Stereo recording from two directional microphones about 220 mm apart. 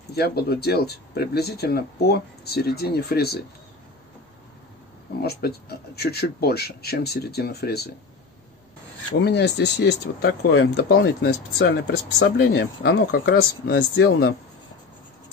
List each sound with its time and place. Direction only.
0.1 s speech: 45° left (ahead or behind)
5.2 s speech: 45° left (ahead or behind)
9.2 s speech: 50° left (ahead or behind)